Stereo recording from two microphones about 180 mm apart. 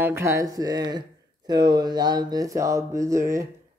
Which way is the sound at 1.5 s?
25° right (ahead or behind).